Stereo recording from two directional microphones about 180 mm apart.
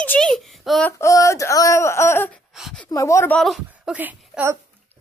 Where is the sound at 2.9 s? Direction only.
15° left (ahead or behind).